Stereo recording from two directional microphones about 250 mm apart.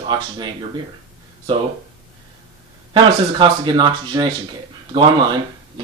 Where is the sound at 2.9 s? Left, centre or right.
Centre.